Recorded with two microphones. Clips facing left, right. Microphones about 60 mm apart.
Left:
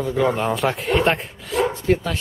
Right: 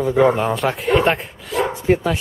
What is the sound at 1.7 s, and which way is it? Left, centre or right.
Bow-wow, centre.